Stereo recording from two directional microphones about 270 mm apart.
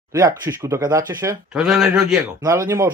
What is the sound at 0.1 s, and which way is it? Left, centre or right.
Speech, centre.